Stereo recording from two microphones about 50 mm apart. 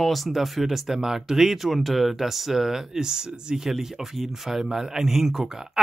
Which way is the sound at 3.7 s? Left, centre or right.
Centre.